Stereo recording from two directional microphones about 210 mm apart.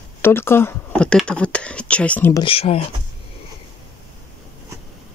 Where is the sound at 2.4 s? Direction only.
25° left (ahead or behind).